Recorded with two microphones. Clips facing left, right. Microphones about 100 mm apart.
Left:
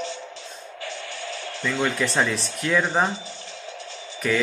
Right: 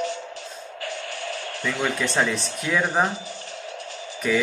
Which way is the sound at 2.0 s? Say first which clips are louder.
Even; centre (ahead or behind).